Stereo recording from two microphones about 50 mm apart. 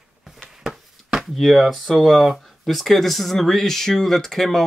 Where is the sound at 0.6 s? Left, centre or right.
Centre.